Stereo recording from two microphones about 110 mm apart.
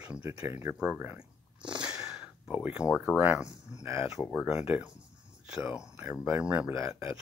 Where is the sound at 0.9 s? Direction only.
15° right (ahead or behind).